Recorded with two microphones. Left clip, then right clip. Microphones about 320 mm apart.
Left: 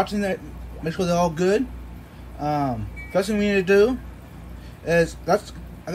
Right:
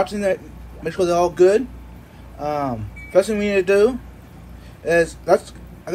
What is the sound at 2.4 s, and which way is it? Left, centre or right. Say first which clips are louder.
Speech: right 1 dB; right.